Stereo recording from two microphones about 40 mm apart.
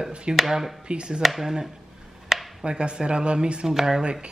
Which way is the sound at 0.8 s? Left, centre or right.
Right.